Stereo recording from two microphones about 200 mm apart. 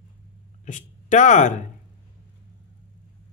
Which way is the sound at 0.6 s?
40° left (ahead or behind).